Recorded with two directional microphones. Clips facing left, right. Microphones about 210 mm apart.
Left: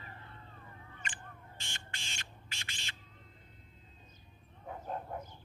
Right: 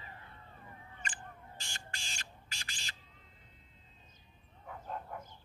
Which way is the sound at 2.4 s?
40° right (ahead or behind).